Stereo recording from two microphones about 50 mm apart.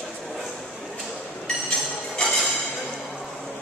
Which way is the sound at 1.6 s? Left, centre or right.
Centre.